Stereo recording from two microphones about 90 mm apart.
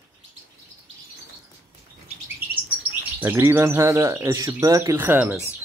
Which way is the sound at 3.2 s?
25° right (ahead or behind).